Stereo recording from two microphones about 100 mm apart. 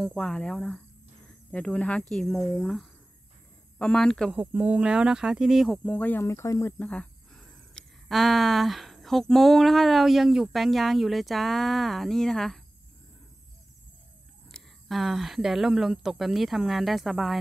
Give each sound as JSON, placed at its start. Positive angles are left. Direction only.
{"t": 0.0, "sound": "speech", "side_deg": 5}
{"t": 4.3, "sound": "speech", "side_deg": -15}
{"t": 5.9, "sound": "speech", "side_deg": 15}
{"t": 6.2, "sound": "speech", "side_deg": 30}
{"t": 6.8, "sound": "speech", "side_deg": 10}
{"t": 14.5, "sound": "speech", "side_deg": 0}